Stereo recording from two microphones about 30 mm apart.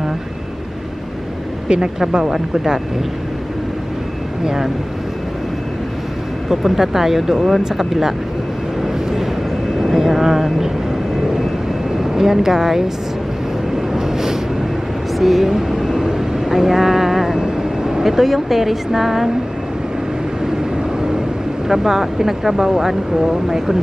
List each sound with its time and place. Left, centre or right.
2.5 s speech: right
6.5 s speech: centre
7.3 s speech: centre
8.8 s vehicle: centre
12.0 s speech: centre
13.9 s vehicle: centre
17.4 s speech: right
20.7 s vehicle: right
21.6 s speech: centre